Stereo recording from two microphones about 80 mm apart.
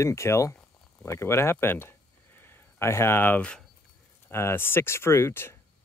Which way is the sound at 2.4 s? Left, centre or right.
Left.